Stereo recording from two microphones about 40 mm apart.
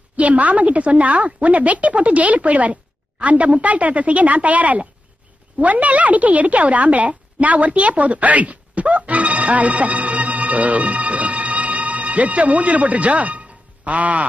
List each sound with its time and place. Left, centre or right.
0.1 s a woman's voice: right